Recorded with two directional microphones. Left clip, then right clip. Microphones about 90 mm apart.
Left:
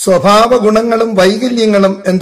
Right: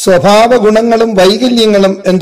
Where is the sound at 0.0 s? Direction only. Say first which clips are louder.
Right 2 dB; 40° right (ahead or behind).